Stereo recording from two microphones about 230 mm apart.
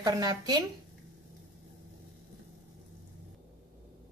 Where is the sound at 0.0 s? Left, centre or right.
Centre.